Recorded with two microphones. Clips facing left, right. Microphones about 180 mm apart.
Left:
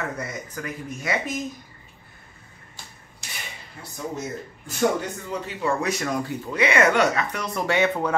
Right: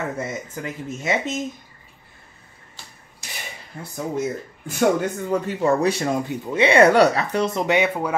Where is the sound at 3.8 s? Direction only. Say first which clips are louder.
Right 7 dB; 50° right (ahead or behind).